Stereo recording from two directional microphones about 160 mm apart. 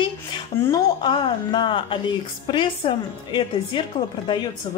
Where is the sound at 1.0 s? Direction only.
30° left (ahead or behind).